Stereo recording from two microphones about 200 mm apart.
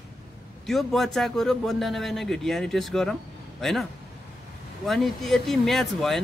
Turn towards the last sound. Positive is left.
turn(degrees=0)  # may be behind; listen again after turning